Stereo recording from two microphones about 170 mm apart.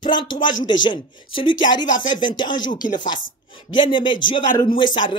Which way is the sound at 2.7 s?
50° left (ahead or behind).